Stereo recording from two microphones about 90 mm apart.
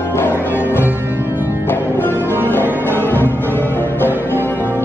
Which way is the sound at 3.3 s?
20° left (ahead or behind).